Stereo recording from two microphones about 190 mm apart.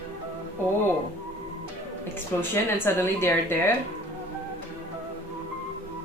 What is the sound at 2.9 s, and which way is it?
Speech, 15° left (ahead or behind).